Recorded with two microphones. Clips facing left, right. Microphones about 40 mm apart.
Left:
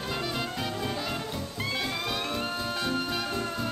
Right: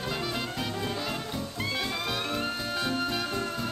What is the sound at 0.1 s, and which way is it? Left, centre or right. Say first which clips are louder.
Music: left 2 dB; centre.